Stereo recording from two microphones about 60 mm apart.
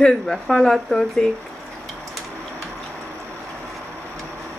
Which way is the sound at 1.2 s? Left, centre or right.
Centre.